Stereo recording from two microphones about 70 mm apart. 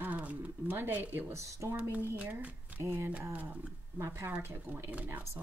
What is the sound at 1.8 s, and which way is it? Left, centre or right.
Speech, right.